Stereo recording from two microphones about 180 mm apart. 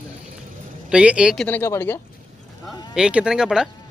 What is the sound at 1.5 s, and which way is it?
Speech, 10° left (ahead or behind).